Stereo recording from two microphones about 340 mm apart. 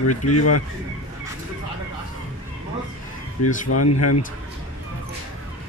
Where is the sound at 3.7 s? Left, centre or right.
Left.